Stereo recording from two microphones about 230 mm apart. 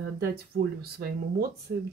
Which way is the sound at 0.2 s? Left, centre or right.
Right.